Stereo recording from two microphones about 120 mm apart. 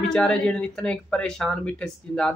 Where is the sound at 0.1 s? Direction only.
5° left (ahead or behind).